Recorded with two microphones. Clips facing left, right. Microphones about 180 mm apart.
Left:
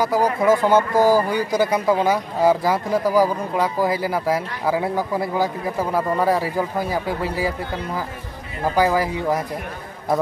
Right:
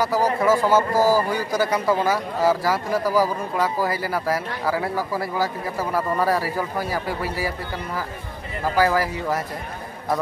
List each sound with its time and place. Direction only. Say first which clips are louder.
0.0 s speech: left 2 dB; 15° left (ahead or behind)